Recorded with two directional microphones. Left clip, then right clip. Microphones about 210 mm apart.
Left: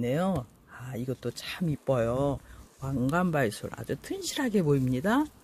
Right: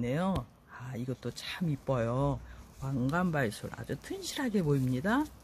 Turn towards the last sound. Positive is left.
turn(degrees=40)  # may be behind; listen again after turning